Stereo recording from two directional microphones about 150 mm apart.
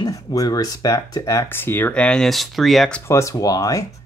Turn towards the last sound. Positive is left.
turn(degrees=25)  # may be behind; listen again after turning